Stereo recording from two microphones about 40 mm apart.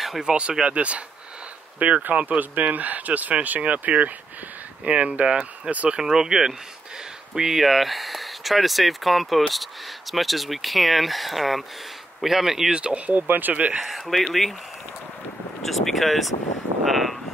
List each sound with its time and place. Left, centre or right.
0.2 s speech: right
5.9 s speech: centre
12.7 s speech: right
13.7 s speech: centre
15.6 s speech: centre